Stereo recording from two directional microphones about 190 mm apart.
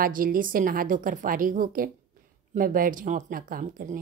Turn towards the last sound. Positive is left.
turn(degrees=-45)  # may be behind; listen again after turning